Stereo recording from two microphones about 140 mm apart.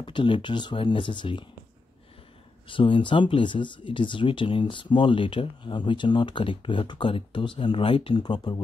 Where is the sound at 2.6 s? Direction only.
35° left (ahead or behind).